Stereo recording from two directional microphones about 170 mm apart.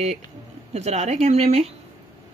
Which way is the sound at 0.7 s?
40° right (ahead or behind).